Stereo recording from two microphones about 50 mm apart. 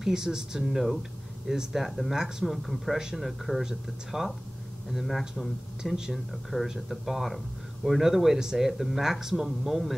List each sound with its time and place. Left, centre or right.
0.0 s speech: centre
5.8 s speech: centre